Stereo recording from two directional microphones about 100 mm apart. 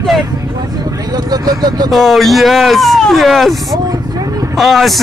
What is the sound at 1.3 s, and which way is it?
Vehicle, 40° right (ahead or behind).